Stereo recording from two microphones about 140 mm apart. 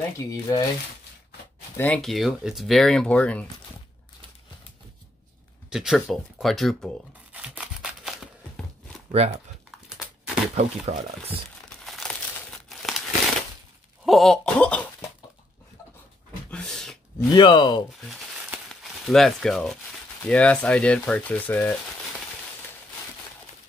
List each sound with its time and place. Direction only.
0.2 s speech: 30° left (ahead or behind)
1.8 s speech: 5° left (ahead or behind)
5.7 s speech: 5° right (ahead or behind)
7.3 s scissors: 10° right (ahead or behind)
9.8 s crushing: 5° right (ahead or behind)
10.5 s speech: 50° right (ahead or behind)
11.8 s crumpling: centre (ahead or behind)
14.0 s a sound: centre (ahead or behind)
16.4 s a sound: 5° left (ahead or behind)
17.3 s speech: 35° left (ahead or behind)
18.0 s crumpling: centre (ahead or behind)
20.2 s speech: 10° left (ahead or behind)